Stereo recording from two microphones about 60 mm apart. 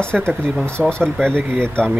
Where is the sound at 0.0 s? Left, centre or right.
Centre.